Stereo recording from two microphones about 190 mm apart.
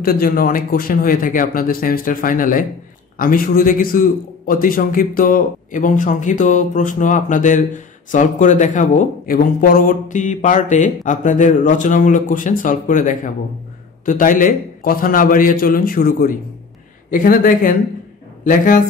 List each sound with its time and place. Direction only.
0.0 s a man's voice: 50° left (ahead or behind)